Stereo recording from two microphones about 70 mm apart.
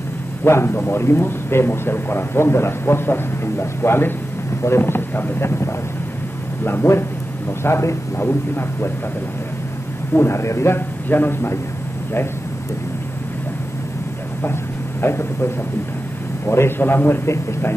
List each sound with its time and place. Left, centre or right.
0.4 s a man's voice: left
10.1 s a man's voice: left
14.4 s a sound: left
16.4 s a man's voice: left